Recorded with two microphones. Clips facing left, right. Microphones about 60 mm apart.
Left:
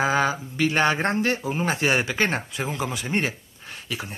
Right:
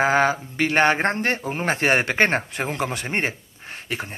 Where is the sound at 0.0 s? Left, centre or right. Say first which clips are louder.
Right 3 dB; right.